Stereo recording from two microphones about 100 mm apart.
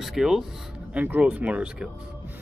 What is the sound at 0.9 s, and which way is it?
Speech, 15° right (ahead or behind).